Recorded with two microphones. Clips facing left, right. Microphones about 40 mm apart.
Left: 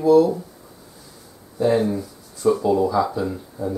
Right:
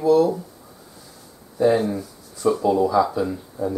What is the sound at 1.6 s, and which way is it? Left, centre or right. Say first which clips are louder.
Speech: even; centre.